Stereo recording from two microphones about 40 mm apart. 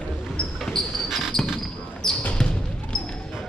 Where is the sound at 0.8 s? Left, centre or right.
Centre.